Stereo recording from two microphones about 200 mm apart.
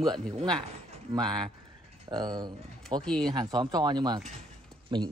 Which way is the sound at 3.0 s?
5° left (ahead or behind).